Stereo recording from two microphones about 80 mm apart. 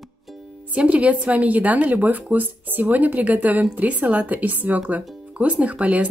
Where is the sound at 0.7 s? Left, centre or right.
Centre.